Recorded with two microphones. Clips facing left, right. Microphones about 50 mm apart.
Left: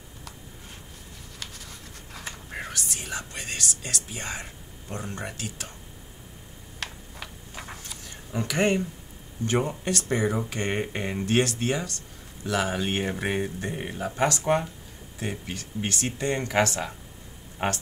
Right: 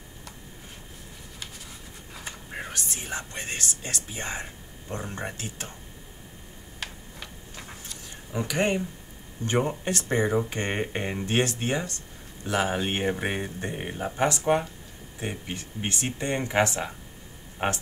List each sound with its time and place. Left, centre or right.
1.4 s writing: centre
2.7 s speech: right
6.8 s tick-tock: centre
7.5 s a sound: centre
8.4 s speech: centre
9.5 s speech: right
13.2 s speech: centre
14.4 s speech: centre
15.1 s speech: right